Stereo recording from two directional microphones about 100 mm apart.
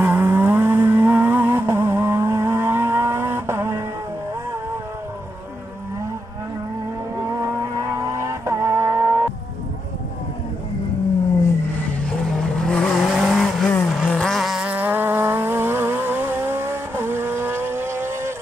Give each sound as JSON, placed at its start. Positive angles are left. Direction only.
{"t": 0.0, "sound": "vehicle", "side_deg": -20}
{"t": 7.7, "sound": "vehicle", "side_deg": -30}
{"t": 12.4, "sound": "vehicle", "side_deg": 5}
{"t": 14.7, "sound": "vehicle", "side_deg": -20}